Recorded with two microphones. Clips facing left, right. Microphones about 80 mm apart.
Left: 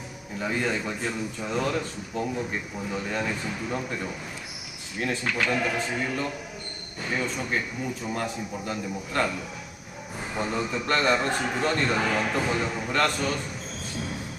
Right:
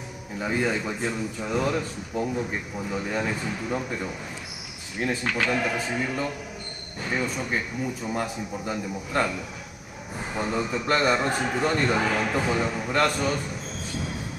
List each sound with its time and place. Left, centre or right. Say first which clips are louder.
0.4 s a man's voice: right 2 dB; centre
5.4 s speech: even; centre
8.1 s a man's voice: right 1 dB; centre
10.3 s a man's voice: right 1 dB; centre